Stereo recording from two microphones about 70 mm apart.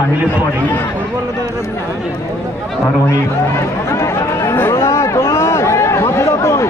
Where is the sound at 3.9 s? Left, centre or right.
Left.